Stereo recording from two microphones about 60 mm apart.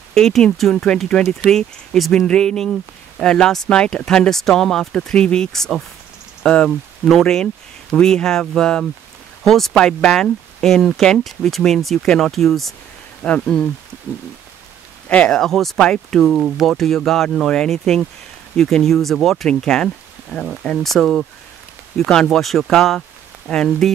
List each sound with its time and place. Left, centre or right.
0.1 s speech: centre
2.2 s speech: centre
13.2 s speech: centre
15.0 s speech: centre